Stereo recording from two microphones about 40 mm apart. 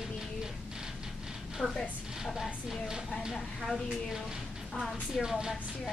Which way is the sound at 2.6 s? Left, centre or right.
Centre.